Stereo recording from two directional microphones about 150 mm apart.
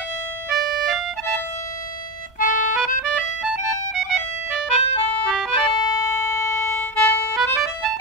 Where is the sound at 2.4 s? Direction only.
60° left (ahead or behind).